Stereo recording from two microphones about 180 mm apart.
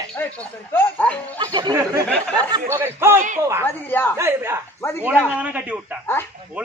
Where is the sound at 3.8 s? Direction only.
10° left (ahead or behind).